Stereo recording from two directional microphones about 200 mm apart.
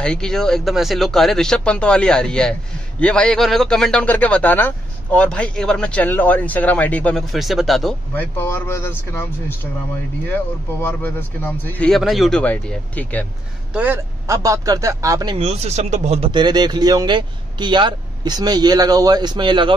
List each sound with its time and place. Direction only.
0.0 s a man's voice: 5° left (ahead or behind)
13.7 s speech: 10° right (ahead or behind)